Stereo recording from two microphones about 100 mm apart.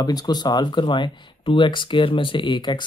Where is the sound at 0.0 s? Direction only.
40° left (ahead or behind).